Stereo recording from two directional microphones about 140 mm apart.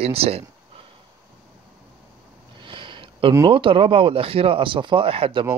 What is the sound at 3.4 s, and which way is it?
Speech, 40° right (ahead or behind).